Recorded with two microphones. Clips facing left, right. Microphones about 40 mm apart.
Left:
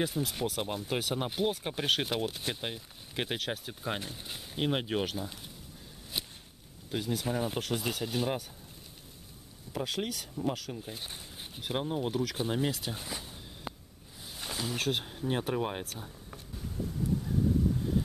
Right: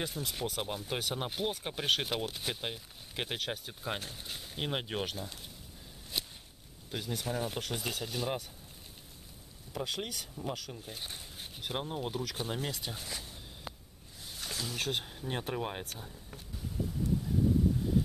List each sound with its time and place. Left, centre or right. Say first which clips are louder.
0.0 s speech: left 5 dB; centre
6.1 s a sound: even; centre
6.9 s speech: left 4 dB; centre
9.7 s speech: left 3 dB; centre
14.4 s a sound: left 3 dB; centre
14.8 s speech: left 3 dB; centre